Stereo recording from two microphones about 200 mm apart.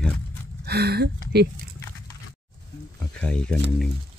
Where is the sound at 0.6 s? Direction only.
55° right (ahead or behind).